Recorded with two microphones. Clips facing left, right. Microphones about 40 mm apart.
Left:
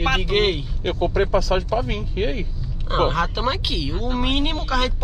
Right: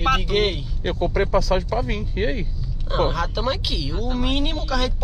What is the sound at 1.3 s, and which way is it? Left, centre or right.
Speech, left.